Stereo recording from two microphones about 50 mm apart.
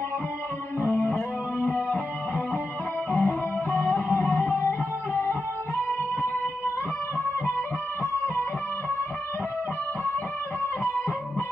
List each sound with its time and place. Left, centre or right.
0.7 s music: left
4.6 s guitar: left